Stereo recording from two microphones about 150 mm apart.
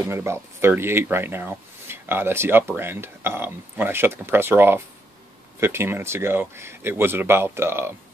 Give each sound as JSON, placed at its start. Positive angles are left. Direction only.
{"t": 0.1, "sound": "speech", "side_deg": -15}